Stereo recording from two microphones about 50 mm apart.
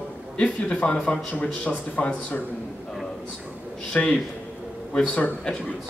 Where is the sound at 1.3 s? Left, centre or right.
Left.